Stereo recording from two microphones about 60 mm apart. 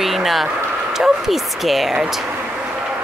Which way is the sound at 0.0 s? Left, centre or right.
Centre.